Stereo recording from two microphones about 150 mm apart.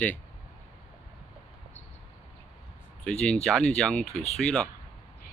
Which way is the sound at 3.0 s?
5° left (ahead or behind).